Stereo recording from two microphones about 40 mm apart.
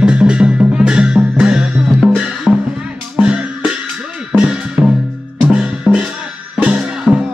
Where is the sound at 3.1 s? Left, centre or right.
Right.